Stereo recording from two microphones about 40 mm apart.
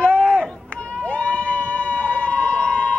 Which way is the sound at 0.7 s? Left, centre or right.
Left.